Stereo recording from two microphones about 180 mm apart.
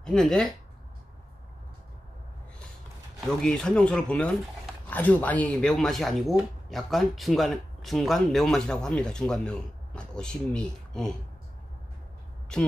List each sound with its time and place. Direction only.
0.0 s speech: 5° left (ahead or behind)
3.3 s speech: 5° left (ahead or behind)
12.5 s speech: 5° left (ahead or behind)